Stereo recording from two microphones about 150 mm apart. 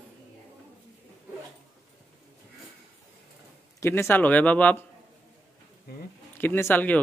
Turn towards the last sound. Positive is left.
turn(degrees=10)  # may be behind; listen again after turning